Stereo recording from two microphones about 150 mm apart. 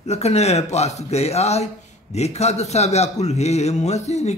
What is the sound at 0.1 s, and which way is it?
A man's voice, 45° left (ahead or behind).